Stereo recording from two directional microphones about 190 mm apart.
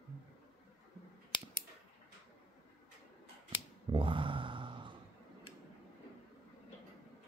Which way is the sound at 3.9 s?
25° right (ahead or behind).